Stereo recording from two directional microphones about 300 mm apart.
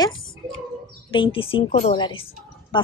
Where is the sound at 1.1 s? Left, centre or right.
Centre.